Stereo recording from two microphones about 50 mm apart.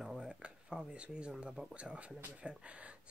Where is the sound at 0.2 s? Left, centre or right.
Centre.